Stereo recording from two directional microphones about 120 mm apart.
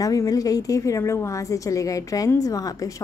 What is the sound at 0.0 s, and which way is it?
Speech, 30° left (ahead or behind).